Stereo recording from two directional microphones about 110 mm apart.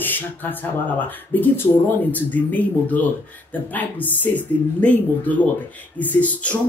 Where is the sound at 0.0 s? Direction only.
15° left (ahead or behind).